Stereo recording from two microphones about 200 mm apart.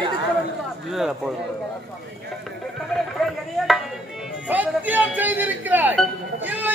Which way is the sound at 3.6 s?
Centre (ahead or behind).